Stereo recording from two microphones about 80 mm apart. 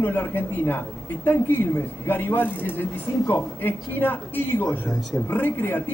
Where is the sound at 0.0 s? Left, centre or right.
Left.